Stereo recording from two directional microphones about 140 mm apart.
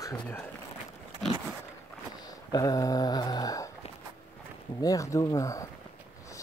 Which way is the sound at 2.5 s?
25° left (ahead or behind).